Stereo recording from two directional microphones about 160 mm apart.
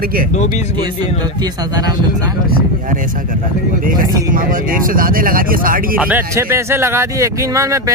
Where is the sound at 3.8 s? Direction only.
60° right (ahead or behind).